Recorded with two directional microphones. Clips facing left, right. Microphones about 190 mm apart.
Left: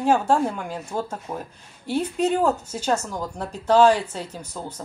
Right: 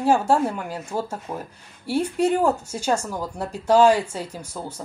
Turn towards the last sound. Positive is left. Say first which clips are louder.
# right 1 dB
turn(degrees=-10)  # may be behind; listen again after turning